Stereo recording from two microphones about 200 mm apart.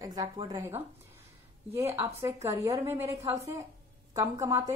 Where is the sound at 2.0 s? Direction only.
15° right (ahead or behind).